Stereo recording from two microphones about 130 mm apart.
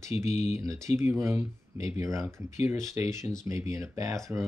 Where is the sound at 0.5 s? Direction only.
25° right (ahead or behind).